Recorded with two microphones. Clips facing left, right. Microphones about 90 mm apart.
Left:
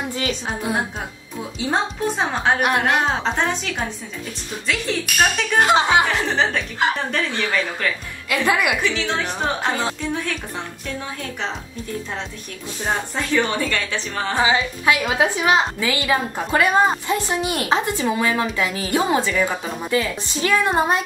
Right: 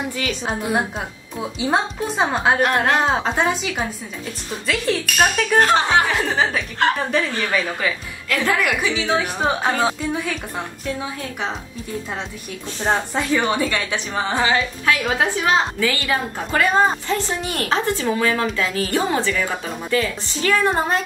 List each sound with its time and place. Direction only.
1.6 s a woman's voice: 5° right (ahead or behind)
2.6 s a woman's voice: 15° left (ahead or behind)
3.1 s a woman's voice: 5° right (ahead or behind)
5.6 s a woman's voice: 15° left (ahead or behind)
6.0 s a woman's voice: centre (ahead or behind)
8.5 s a woman's voice: 15° left (ahead or behind)
8.8 s a woman's voice: 10° right (ahead or behind)
13.1 s a woman's voice: 10° right (ahead or behind)
14.4 s a woman's voice: 15° left (ahead or behind)